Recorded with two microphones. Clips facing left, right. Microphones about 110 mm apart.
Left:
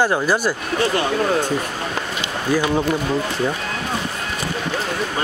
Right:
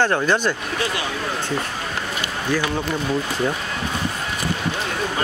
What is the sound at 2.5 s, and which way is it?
Speech, 20° left (ahead or behind).